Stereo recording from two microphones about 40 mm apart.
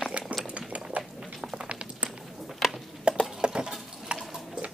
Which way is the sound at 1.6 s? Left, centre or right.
Right.